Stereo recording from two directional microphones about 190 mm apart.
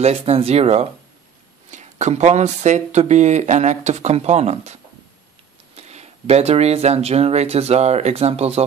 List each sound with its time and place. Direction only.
0.0 s speech: 30° right (ahead or behind)
5.8 s speech: 35° right (ahead or behind)